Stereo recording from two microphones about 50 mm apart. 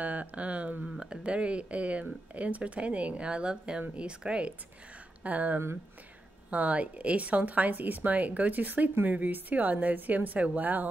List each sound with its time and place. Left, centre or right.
0.0 s a woman's voice: right